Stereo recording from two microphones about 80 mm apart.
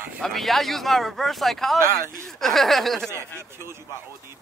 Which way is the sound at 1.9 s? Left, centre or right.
Left.